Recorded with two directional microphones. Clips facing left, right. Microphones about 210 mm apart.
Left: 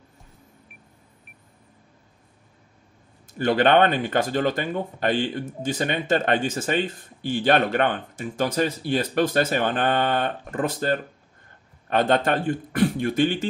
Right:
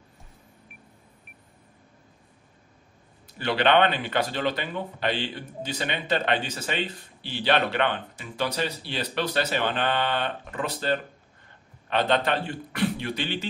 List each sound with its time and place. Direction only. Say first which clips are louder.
3.3 s speech: left 4 dB; 45° left (ahead or behind)